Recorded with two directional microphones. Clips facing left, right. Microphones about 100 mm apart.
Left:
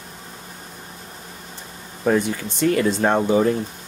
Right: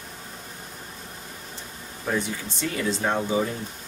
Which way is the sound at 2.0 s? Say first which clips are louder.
Left 8 dB; 55° left (ahead or behind).